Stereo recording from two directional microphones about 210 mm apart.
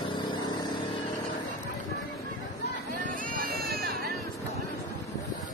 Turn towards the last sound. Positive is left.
turn(degrees=-45)  # may be behind; listen again after turning